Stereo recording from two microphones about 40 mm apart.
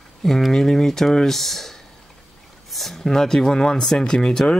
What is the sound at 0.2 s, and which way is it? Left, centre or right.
Speech, centre.